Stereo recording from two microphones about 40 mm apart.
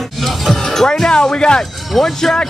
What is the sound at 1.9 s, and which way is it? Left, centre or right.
Speech, centre.